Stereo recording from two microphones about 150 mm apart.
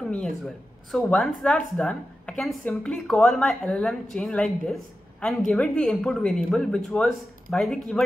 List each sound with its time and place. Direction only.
0.9 s a woman's voice: 5° left (ahead or behind)